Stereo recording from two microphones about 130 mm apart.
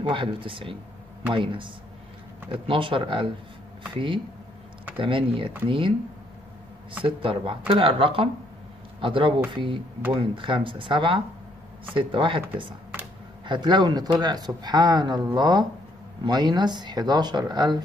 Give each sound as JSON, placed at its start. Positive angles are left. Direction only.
{"t": 0.1, "sound": "speech", "side_deg": -40}
{"t": 7.1, "sound": "speech", "side_deg": -40}